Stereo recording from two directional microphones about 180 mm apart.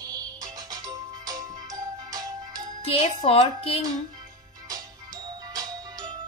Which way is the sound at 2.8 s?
35° left (ahead or behind).